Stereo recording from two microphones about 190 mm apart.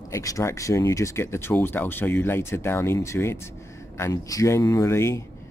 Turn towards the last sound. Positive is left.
turn(degrees=15)  # may be behind; listen again after turning